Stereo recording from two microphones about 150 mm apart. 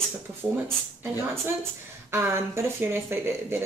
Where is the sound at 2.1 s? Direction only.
15° right (ahead or behind).